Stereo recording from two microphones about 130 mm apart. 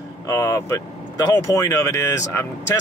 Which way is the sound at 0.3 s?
20° left (ahead or behind).